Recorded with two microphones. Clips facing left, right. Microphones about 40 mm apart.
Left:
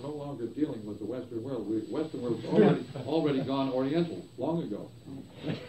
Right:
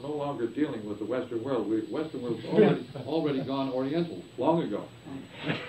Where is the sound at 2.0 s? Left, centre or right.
Right; by 4.1 s centre.